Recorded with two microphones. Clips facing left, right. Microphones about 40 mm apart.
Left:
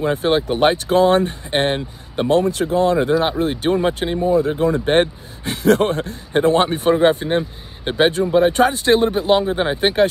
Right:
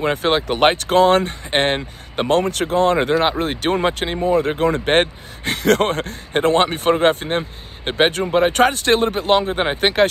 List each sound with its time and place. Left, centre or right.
0.0 s speech: right
8.3 s speech: right
8.5 s speech: right
9.5 s speech: right
9.8 s speech: right